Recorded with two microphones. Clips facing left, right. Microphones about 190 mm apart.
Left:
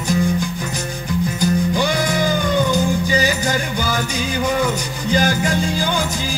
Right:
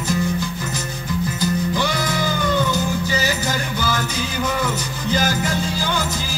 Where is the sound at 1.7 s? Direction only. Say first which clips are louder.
Left 3 dB; 15° left (ahead or behind).